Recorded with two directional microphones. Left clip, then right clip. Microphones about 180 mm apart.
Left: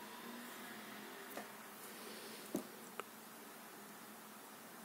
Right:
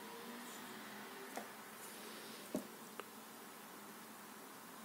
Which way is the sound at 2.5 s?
20° left (ahead or behind).